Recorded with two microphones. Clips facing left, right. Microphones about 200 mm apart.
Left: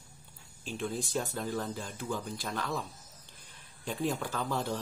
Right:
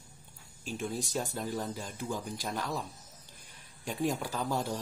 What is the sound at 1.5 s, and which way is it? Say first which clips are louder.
Speech: even; 10° right (ahead or behind).